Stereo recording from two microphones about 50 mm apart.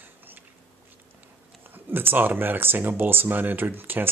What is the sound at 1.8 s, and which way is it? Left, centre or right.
Speech, right.